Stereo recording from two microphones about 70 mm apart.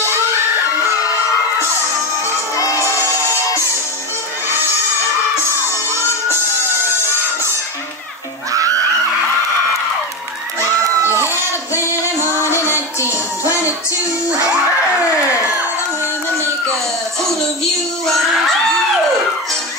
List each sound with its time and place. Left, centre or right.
2.5 s music: left
8.5 s screaming: right
11.0 s music: right
18.0 s a sound: centre